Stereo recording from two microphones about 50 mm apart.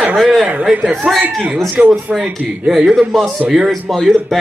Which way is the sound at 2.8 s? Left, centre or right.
Centre.